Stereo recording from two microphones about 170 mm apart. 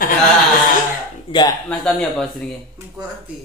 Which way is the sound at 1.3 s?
25° left (ahead or behind).